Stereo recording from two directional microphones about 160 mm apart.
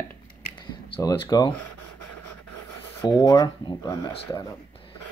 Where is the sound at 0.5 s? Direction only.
25° left (ahead or behind).